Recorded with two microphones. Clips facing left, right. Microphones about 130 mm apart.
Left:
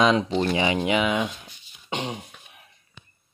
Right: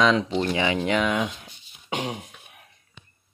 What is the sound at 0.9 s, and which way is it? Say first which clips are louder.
Speech: even; 5° left (ahead or behind).